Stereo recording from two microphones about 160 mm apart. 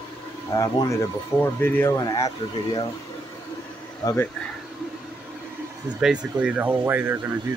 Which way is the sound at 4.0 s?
15° left (ahead or behind).